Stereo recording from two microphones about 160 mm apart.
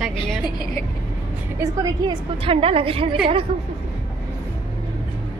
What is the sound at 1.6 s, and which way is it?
A woman's voice, 25° right (ahead or behind).